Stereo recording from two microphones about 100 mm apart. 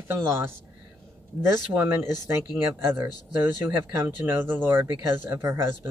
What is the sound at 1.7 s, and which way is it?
Speech, 25° right (ahead or behind).